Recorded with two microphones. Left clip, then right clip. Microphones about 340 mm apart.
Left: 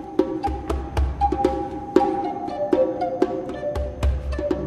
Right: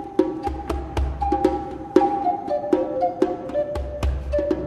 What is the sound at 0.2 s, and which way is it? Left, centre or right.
Music, right.